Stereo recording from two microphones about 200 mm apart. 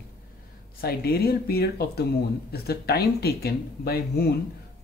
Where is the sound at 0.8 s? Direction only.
50° left (ahead or behind).